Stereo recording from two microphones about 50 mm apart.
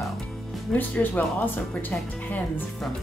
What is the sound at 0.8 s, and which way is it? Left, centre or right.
Speech, left.